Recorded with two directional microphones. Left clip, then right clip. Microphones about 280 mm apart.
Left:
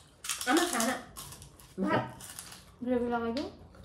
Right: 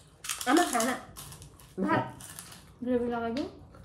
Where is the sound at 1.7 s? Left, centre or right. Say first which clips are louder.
Right 2 dB; centre.